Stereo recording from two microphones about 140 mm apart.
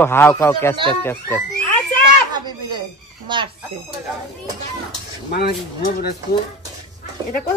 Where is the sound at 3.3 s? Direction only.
35° right (ahead or behind).